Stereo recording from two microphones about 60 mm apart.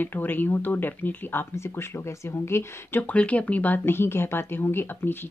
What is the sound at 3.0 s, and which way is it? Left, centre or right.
Speech, left.